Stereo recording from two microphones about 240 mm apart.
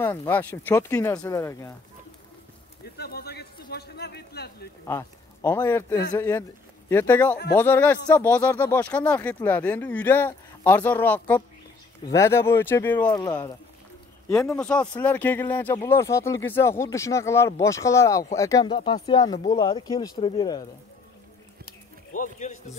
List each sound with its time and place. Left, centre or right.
0.0 s speech: centre
3.0 s a sound: left
4.8 s speech: centre
22.1 s music: left